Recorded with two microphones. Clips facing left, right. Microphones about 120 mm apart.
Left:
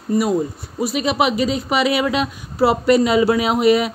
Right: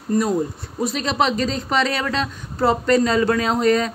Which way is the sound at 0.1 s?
5° left (ahead or behind).